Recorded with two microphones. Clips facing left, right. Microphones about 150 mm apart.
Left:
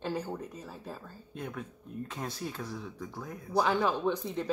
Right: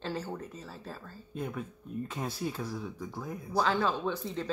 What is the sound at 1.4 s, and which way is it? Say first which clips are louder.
Speech: right 3 dB; 5° right (ahead or behind).